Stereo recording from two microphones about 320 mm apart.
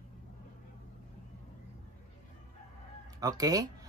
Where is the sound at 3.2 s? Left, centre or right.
Centre.